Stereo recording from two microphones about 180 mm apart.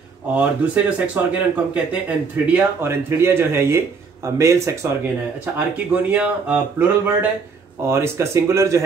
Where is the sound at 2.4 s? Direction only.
10° right (ahead or behind).